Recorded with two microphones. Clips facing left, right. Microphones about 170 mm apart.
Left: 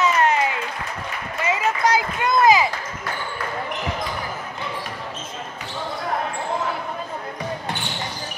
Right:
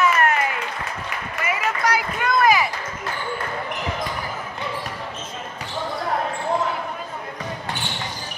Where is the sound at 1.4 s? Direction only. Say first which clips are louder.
Left 3 dB; 25° left (ahead or behind).